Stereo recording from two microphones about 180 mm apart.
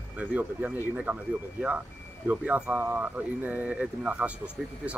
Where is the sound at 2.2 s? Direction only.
10° right (ahead or behind).